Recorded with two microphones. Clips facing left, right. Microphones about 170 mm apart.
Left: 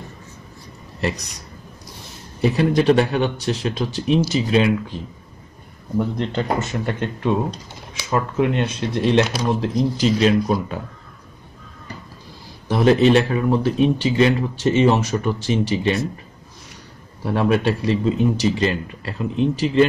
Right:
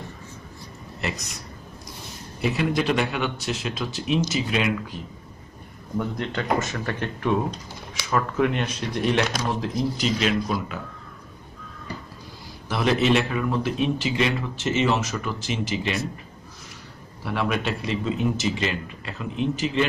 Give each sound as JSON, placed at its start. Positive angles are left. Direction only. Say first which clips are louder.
{"t": 2.5, "sound": "speech", "louder": "left 8 dB", "side_deg": 35}
{"t": 9.6, "sound": "speech", "louder": "left 5 dB", "side_deg": 35}
{"t": 12.6, "sound": "speech", "louder": "left 7 dB", "side_deg": 35}
{"t": 17.2, "sound": "speech", "louder": "left 7 dB", "side_deg": 35}